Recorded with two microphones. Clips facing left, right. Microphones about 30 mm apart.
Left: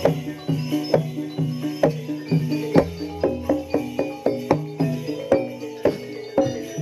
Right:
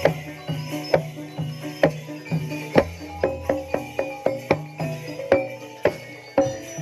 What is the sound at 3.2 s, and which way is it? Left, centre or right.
Music, right.